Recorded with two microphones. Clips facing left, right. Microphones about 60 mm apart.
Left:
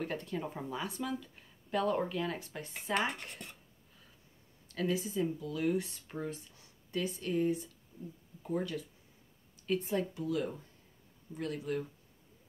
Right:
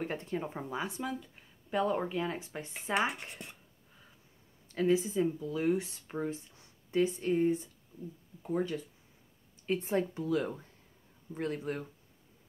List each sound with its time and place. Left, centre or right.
0.0 s speech: right
4.7 s speech: right
9.7 s speech: right